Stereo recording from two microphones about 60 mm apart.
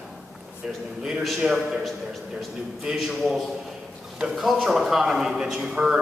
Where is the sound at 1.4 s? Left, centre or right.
Centre.